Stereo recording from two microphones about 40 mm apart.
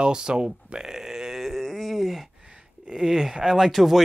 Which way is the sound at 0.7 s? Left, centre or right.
Centre.